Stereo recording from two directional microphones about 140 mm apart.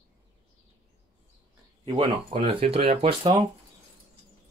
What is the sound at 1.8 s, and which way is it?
Speech, 40° right (ahead or behind).